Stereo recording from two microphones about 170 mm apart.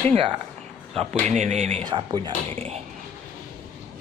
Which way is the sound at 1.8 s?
25° right (ahead or behind).